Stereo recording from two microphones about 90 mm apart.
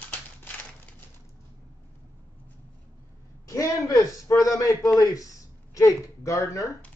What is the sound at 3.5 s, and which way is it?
A man's voice, 40° left (ahead or behind).